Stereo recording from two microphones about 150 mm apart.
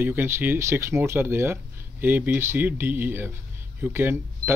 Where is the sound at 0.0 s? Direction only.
15° right (ahead or behind).